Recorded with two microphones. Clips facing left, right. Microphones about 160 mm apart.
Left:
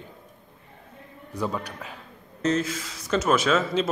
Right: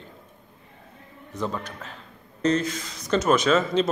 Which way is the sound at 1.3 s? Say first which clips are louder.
Left 1 dB; 10° left (ahead or behind).